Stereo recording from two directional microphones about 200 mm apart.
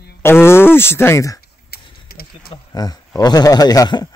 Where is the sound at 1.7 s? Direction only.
50° left (ahead or behind).